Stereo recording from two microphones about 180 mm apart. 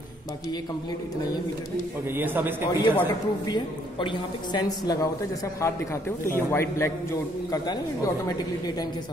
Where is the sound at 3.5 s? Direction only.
25° left (ahead or behind).